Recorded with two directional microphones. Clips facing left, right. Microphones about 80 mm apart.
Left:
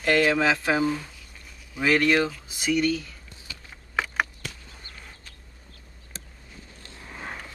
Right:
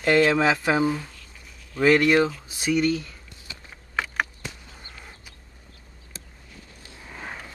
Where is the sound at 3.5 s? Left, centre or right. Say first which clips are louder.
Even; right.